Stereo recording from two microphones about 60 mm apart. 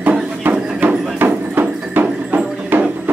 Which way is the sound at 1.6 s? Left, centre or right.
Right.